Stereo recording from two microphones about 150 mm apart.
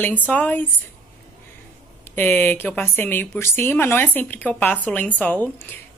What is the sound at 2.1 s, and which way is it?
Speech, 10° left (ahead or behind).